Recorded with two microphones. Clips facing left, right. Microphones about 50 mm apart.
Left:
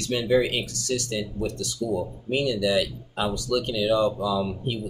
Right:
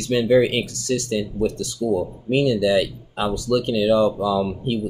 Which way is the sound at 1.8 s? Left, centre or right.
Right.